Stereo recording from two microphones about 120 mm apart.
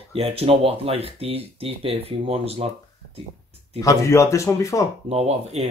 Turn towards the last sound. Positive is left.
turn(degrees=-60)  # may be behind; listen again after turning